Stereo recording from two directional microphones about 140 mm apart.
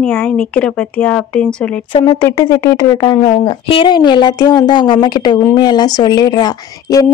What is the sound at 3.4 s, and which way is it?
A woman's voice, 40° left (ahead or behind).